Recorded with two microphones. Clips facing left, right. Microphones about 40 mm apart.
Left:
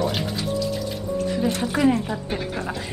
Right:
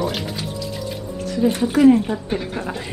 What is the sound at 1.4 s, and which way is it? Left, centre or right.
Speech, right.